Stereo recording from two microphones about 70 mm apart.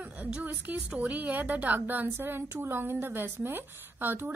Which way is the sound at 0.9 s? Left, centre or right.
Right.